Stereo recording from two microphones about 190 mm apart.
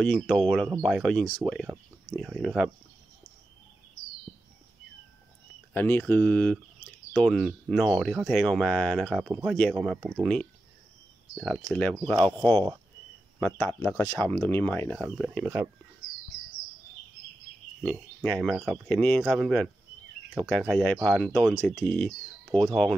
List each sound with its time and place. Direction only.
0.0 s speech: 5° left (ahead or behind)
5.7 s speech: 10° left (ahead or behind)
11.3 s speech: centre (ahead or behind)
12.2 s speech: 20° right (ahead or behind)
13.4 s speech: 10° left (ahead or behind)
15.0 s speech: 5° right (ahead or behind)
17.8 s speech: 5° left (ahead or behind)